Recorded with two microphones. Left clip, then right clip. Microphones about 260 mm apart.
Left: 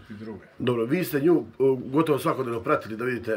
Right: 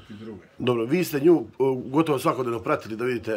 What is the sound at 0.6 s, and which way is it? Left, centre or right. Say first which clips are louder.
A man's voice: right 2 dB; centre.